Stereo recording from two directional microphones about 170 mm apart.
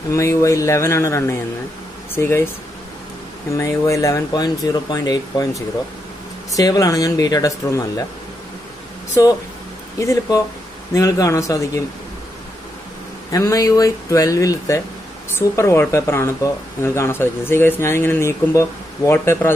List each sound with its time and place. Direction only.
0.1 s speech: 15° left (ahead or behind)
3.5 s speech: 20° left (ahead or behind)
9.2 s speech: 20° left (ahead or behind)
13.3 s speech: 20° left (ahead or behind)